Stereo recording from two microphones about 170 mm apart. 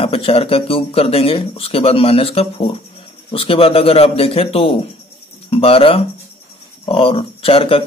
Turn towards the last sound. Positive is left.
turn(degrees=35)  # may be behind; listen again after turning